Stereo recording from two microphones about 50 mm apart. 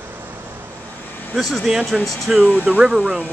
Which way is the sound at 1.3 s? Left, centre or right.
Centre.